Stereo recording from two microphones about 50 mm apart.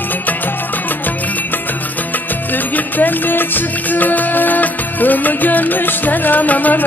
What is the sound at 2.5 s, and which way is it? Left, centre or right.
Music, left.